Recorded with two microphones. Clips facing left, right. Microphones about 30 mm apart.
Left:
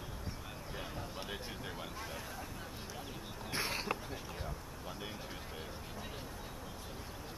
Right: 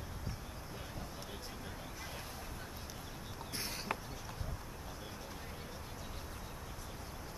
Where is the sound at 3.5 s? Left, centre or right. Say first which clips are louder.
Left 7 dB; left.